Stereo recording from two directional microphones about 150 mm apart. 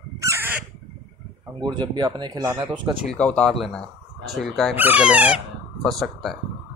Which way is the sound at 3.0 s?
5° left (ahead or behind).